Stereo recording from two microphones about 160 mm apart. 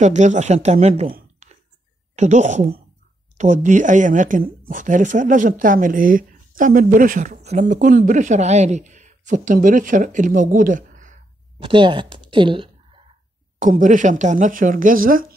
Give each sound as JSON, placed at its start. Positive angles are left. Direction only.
{"t": 0.0, "sound": "speech", "side_deg": -50}
{"t": 1.4, "sound": "whispering", "side_deg": -40}
{"t": 2.1, "sound": "speech", "side_deg": -50}
{"t": 11.6, "sound": "a woman's voice", "side_deg": -30}
{"t": 13.6, "sound": "speech", "side_deg": -55}